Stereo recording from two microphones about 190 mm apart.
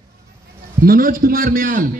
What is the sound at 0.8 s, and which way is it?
A man's voice, 50° right (ahead or behind).